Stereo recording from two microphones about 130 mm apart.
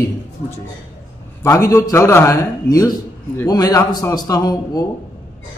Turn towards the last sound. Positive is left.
turn(degrees=30)  # may be behind; listen again after turning